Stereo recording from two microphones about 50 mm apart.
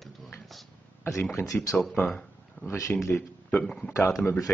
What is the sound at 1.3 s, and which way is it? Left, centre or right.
Speech, left.